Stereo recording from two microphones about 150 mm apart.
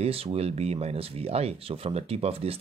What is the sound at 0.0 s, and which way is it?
Speech, 40° right (ahead or behind).